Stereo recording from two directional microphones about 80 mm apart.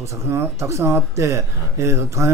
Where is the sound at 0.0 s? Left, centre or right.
Right.